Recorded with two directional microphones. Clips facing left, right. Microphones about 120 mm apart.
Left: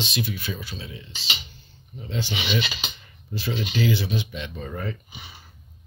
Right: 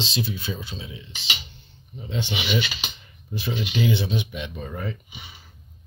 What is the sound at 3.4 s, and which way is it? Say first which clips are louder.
Speech: even; 20° right (ahead or behind).